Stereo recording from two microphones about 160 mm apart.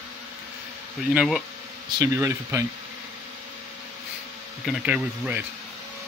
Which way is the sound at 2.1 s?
15° right (ahead or behind).